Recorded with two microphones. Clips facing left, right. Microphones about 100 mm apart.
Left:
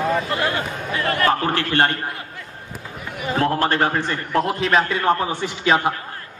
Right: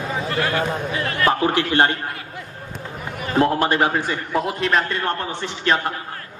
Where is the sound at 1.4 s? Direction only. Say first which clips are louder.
Right 2 dB; 15° right (ahead or behind).